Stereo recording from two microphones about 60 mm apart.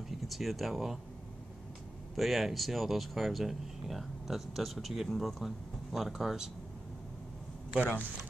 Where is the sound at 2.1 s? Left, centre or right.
Centre.